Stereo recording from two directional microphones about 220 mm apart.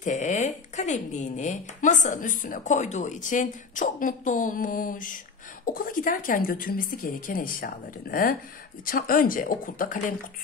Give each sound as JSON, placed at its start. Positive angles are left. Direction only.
{"t": 0.0, "sound": "a woman's voice", "side_deg": 35}